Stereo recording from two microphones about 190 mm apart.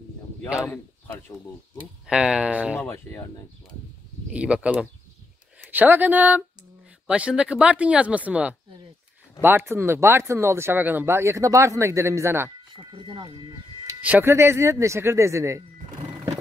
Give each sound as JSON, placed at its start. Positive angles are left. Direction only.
{"t": 2.0, "sound": "speech", "side_deg": -5}
{"t": 2.8, "sound": "speech", "side_deg": 10}
{"t": 4.3, "sound": "speech", "side_deg": -5}
{"t": 14.0, "sound": "speech", "side_deg": -10}